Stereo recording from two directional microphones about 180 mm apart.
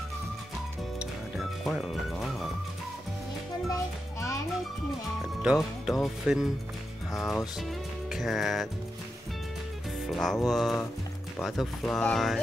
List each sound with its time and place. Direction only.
1.3 s music: centre (ahead or behind)
3.6 s music: 20° left (ahead or behind)
5.4 s speech: 5° right (ahead or behind)
7.6 s music: centre (ahead or behind)
10.0 s speech: centre (ahead or behind)